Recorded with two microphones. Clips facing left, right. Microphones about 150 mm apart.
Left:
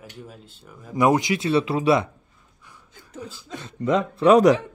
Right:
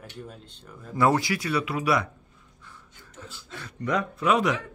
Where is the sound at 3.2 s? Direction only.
20° left (ahead or behind); by 4.6 s 35° left (ahead or behind).